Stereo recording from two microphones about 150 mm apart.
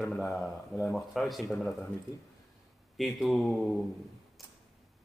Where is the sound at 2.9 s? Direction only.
Centre (ahead or behind).